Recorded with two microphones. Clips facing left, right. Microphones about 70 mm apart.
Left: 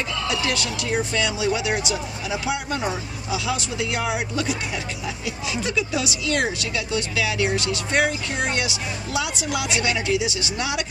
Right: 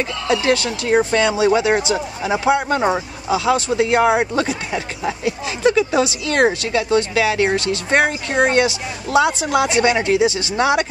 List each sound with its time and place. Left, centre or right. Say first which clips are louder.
0.3 s speech: right 11 dB; right